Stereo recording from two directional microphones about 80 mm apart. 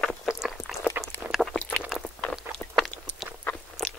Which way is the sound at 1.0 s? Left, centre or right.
Right.